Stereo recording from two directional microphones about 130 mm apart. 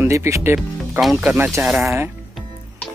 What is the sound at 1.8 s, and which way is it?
Speech, 20° right (ahead or behind).